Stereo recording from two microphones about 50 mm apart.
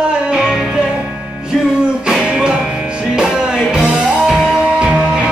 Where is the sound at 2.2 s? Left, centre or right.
Centre.